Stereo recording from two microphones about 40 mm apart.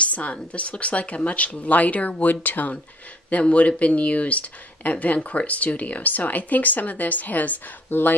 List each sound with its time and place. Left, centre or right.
0.0 s speech: left
2.2 s speech: left